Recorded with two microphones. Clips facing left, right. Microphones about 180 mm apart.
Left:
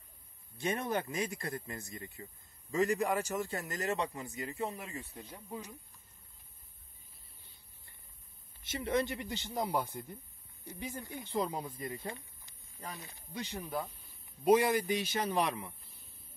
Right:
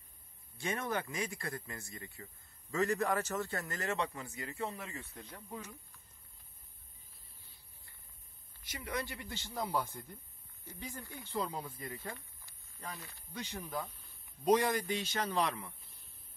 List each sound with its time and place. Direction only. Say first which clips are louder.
0.6 s a man's voice: left 3 dB; 20° left (ahead or behind)
8.6 s a man's voice: left 8 dB; 25° left (ahead or behind)